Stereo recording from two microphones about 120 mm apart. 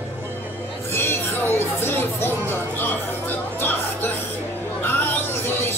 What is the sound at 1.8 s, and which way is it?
Music, 20° left (ahead or behind).